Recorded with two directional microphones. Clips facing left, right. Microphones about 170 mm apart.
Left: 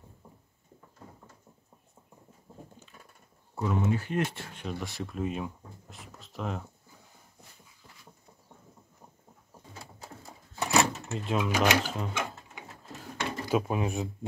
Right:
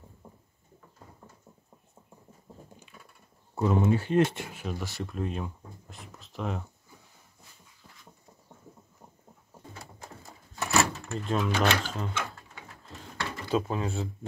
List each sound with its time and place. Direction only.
3.5 s speech: 30° right (ahead or behind)
4.5 s speech: 5° right (ahead or behind)
10.6 s door: 15° left (ahead or behind)
11.1 s speech: 5° left (ahead or behind)